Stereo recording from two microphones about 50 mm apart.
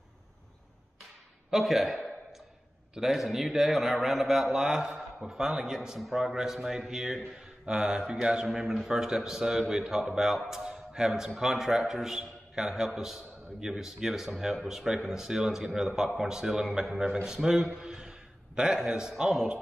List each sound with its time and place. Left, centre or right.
1.5 s a man's voice: centre
5.5 s a man's voice: centre
17.7 s a sound: centre
18.6 s a man's voice: centre